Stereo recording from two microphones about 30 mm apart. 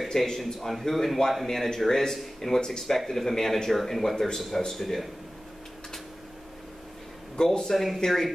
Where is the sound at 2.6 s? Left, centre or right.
Left.